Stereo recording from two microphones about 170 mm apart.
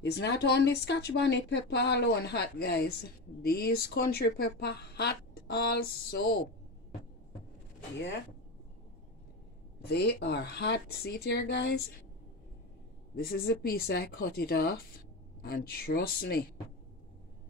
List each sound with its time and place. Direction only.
0.0 s speech: 80° left; by 6.3 s 65° left (ahead or behind)
9.8 s speech: 75° left (ahead or behind)
13.1 s speech: 65° left (ahead or behind)